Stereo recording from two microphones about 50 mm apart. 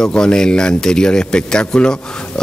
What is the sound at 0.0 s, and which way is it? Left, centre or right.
Speech, centre.